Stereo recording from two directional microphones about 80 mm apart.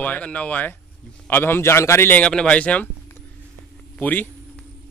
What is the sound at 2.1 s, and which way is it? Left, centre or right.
Speech, centre.